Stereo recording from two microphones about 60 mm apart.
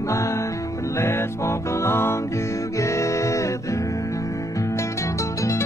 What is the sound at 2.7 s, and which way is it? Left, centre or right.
Music, left.